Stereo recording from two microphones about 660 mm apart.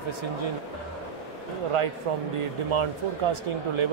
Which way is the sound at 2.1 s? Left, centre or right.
Right.